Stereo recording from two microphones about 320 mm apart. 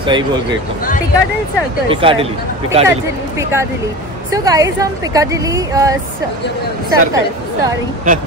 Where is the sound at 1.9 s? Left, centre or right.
Centre.